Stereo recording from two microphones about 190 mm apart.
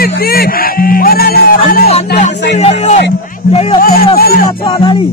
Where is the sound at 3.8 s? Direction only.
50° left (ahead or behind).